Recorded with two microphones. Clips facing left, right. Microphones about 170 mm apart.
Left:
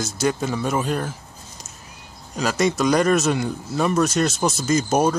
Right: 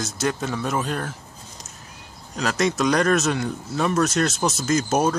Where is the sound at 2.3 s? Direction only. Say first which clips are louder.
Left 2 dB; centre (ahead or behind).